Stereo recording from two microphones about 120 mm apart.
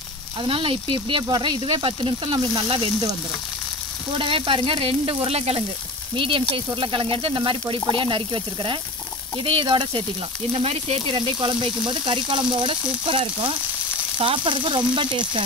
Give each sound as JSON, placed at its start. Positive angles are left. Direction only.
{"t": 0.4, "sound": "speech", "side_deg": -45}
{"t": 4.2, "sound": "speech", "side_deg": -45}
{"t": 6.1, "sound": "speech", "side_deg": -45}
{"t": 10.5, "sound": "speech", "side_deg": -55}